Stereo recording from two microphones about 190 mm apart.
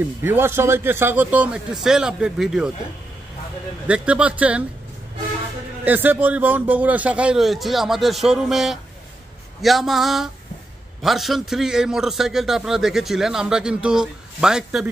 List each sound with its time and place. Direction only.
0.2 s a man's voice: 10° right (ahead or behind)
3.8 s a man's voice: 5° right (ahead or behind)
5.9 s a man's voice: 10° right (ahead or behind)